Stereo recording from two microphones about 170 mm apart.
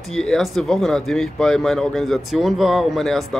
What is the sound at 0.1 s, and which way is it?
Speech, 5° left (ahead or behind).